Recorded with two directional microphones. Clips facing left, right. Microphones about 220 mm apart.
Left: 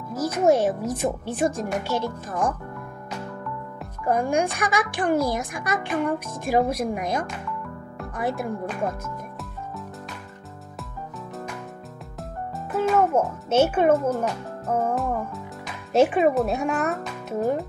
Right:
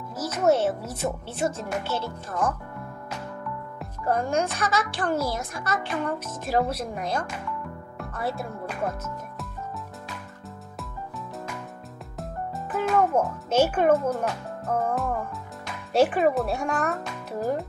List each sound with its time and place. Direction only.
0.1 s a child's voice: 10° left (ahead or behind)
4.0 s a child's voice: 10° left (ahead or behind)
10.8 s music: centre (ahead or behind)
12.2 s a child's voice: centre (ahead or behind)